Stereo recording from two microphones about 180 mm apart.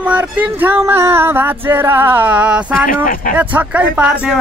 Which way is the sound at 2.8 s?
50° left (ahead or behind).